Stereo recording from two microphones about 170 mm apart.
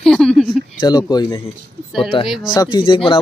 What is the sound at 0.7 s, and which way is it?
Speech, 25° left (ahead or behind).